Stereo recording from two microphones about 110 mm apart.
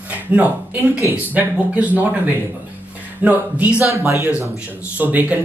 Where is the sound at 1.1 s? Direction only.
15° right (ahead or behind).